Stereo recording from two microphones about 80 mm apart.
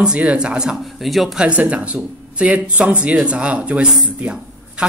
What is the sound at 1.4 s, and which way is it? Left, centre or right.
Speech, centre.